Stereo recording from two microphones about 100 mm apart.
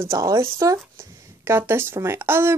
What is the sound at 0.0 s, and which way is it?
Speech, 30° right (ahead or behind).